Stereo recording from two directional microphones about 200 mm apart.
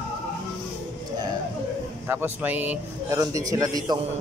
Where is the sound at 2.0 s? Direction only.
10° right (ahead or behind).